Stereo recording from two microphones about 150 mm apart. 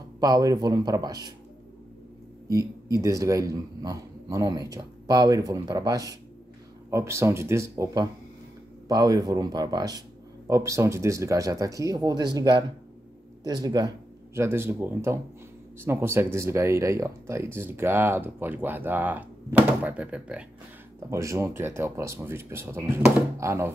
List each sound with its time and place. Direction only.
0.2 s speech: 25° right (ahead or behind)
2.5 s speech: 20° right (ahead or behind)
21.1 s speech: 20° right (ahead or behind)